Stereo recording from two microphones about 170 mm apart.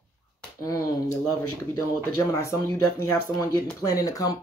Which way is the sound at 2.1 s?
15° left (ahead or behind).